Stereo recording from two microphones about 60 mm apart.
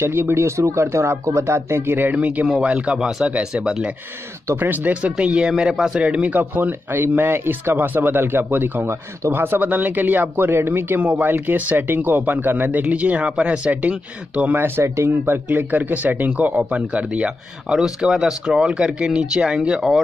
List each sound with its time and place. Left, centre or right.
0.0 s speech: right
2.1 s speech: right
2.4 s speech: centre
2.7 s speech: right
5.1 s speech: centre
15.0 s speech: right; by 20.0 s centre